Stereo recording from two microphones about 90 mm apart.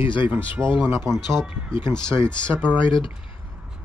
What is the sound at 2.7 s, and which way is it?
Speech, 65° left (ahead or behind).